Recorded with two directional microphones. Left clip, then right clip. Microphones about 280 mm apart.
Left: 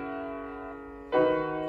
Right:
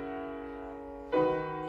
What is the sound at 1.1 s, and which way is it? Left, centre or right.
Music, centre.